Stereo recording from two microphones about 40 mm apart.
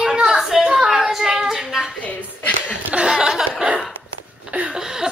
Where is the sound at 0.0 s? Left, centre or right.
Centre.